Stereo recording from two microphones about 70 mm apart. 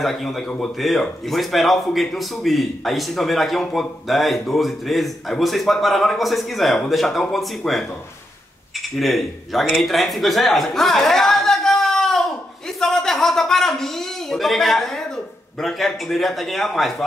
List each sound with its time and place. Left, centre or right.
0.0 s a man's voice: centre
8.9 s a man's voice: centre
12.8 s a sound: centre
15.6 s a man's voice: centre